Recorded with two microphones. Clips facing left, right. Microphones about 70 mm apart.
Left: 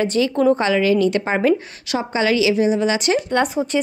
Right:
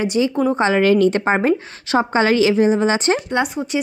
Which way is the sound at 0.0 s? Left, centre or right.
Centre.